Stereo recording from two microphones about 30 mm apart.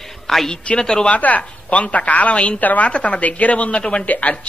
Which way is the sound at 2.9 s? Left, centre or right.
Left.